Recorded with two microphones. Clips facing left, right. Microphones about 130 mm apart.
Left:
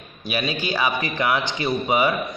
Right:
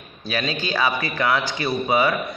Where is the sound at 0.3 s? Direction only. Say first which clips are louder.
Even; 15° left (ahead or behind).